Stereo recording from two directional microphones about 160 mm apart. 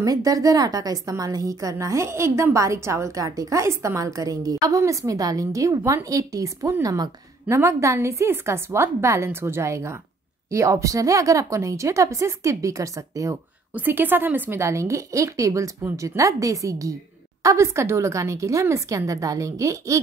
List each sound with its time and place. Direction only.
0.0 s a woman's voice: 20° right (ahead or behind)